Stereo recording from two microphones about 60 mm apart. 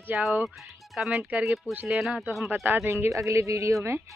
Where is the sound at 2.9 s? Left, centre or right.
Right.